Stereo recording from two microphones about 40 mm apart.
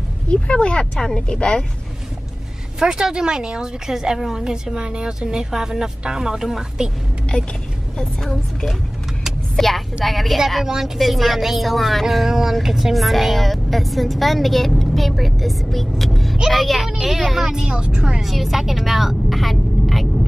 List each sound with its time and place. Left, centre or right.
0.3 s speech: left
0.9 s a woman's voice: centre
1.2 s speech: left
2.8 s speech: centre
4.7 s speech: right
8.0 s a woman's voice: centre
10.6 s a woman's voice: centre
17.6 s speech: right
18.2 s a woman's voice: centre